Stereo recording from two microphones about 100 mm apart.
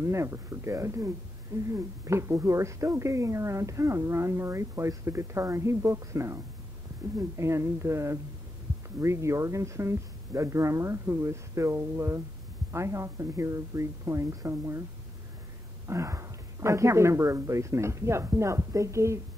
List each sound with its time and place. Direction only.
0.0 s speech: 30° right (ahead or behind)
15.9 s speech: 30° right (ahead or behind)